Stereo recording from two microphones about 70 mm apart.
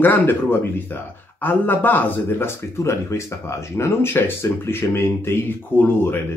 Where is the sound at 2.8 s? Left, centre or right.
Left.